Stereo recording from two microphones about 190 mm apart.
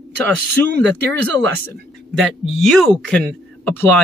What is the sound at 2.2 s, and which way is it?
Speech, centre (ahead or behind).